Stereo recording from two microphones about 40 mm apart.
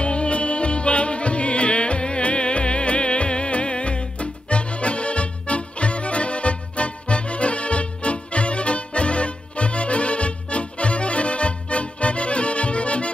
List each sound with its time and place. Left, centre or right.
0.0 s music: left